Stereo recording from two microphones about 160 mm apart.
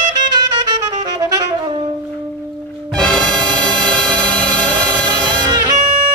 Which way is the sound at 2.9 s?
5° left (ahead or behind).